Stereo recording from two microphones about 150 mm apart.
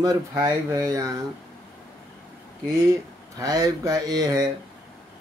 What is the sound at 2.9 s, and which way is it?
Speech, 25° right (ahead or behind).